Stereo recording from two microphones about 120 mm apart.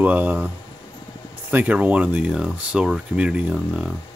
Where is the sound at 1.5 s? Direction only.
15° right (ahead or behind).